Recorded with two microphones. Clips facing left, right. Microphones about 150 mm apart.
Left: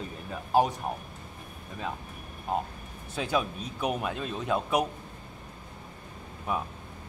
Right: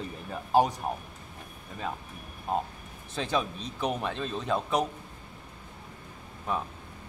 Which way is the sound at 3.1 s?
5° left (ahead or behind).